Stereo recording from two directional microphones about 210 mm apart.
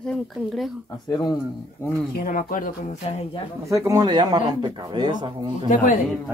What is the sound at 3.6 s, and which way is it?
Speech, 15° right (ahead or behind).